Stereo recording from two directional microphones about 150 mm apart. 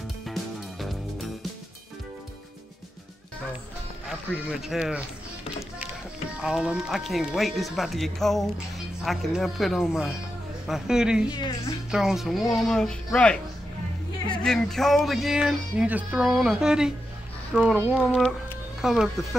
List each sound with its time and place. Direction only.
0.2 s music: centre (ahead or behind)
4.5 s speech: 5° right (ahead or behind)
6.3 s speech: 5° right (ahead or behind)
11.3 s speech: 25° left (ahead or behind)
11.9 s speech: 5° right (ahead or behind)
14.4 s speech: 5° left (ahead or behind)